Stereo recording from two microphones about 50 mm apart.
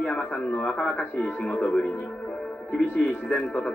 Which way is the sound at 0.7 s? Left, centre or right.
Centre.